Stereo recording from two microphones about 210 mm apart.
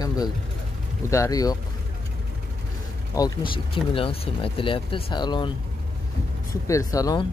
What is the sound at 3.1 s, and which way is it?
Speech, 20° left (ahead or behind).